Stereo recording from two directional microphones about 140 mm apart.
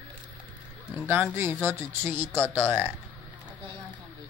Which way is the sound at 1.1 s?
15° right (ahead or behind).